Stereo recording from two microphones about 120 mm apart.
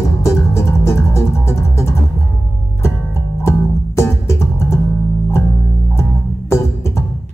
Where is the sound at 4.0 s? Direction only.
25° left (ahead or behind).